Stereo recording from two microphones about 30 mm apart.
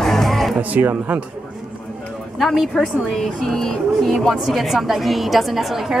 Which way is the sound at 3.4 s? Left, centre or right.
Centre.